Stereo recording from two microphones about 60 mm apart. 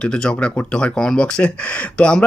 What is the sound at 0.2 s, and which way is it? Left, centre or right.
Speech, centre.